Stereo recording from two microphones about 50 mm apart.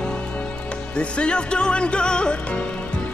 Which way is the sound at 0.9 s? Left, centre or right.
Centre.